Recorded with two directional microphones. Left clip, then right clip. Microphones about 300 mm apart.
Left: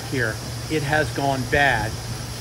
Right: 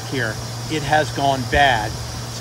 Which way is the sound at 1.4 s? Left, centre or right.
Right.